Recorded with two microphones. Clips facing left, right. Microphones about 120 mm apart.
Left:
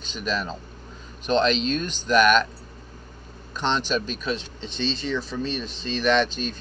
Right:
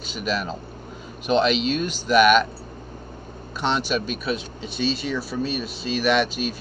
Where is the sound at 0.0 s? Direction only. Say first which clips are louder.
Right 2 dB; 5° right (ahead or behind).